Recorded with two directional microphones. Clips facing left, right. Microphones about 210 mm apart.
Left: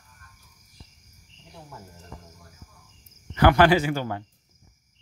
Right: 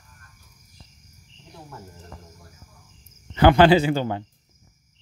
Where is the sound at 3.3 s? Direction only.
25° right (ahead or behind).